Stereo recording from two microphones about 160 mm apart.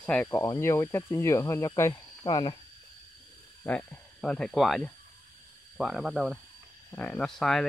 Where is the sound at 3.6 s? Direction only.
10° left (ahead or behind).